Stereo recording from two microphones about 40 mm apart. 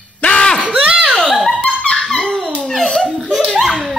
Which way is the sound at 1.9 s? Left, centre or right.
Centre.